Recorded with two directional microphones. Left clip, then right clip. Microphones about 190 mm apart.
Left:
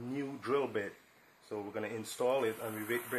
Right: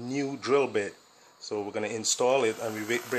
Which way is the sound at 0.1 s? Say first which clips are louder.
Right 9 dB; 35° right (ahead or behind).